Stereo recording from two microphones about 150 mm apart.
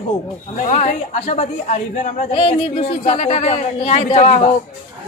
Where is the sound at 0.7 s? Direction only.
45° left (ahead or behind).